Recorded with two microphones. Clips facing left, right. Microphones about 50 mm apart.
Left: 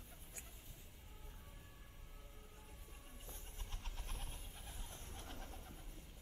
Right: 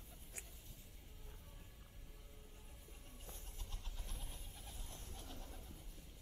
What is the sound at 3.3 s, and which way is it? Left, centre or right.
Bird, left.